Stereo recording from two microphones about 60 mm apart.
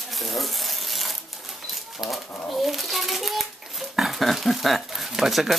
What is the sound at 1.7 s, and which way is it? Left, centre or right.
Pigeon, centre.